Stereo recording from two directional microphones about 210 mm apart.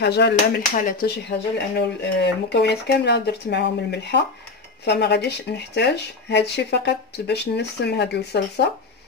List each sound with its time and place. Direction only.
0.0 s speech: 50° left (ahead or behind)
0.6 s speech: 40° left (ahead or behind)
1.8 s speech: 55° left (ahead or behind)